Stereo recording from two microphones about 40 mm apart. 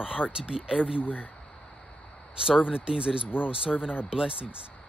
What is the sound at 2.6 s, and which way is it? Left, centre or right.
Speech, right.